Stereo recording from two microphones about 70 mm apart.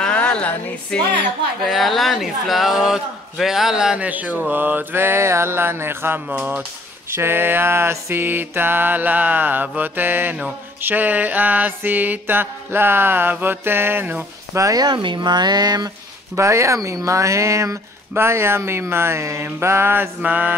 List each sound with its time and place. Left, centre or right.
0.0 s a sound: centre
1.6 s speech: centre; by 14.2 s right
14.5 s speech: right
14.8 s speech: right
16.3 s speech: right